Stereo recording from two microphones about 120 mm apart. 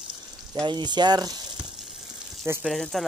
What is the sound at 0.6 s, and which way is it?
Speech, 40° right (ahead or behind).